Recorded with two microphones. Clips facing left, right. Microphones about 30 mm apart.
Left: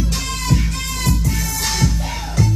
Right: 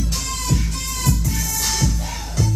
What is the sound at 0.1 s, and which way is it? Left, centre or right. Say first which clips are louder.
Music: left 3 dB; left.